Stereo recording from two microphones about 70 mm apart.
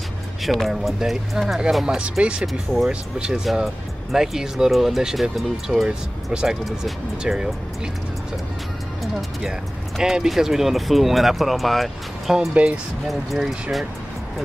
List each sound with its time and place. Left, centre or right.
0.4 s speech: centre
2.0 s speech: centre
2.4 s speech: centre
2.9 s speech: centre
9.0 s speech: centre
12.6 s speech: centre
13.0 s speech: centre